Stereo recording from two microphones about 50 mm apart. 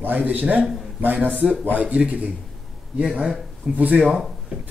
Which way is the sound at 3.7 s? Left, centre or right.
Right.